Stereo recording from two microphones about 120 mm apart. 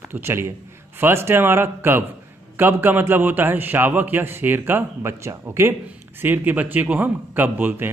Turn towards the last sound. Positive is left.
turn(degrees=-15)  # may be behind; listen again after turning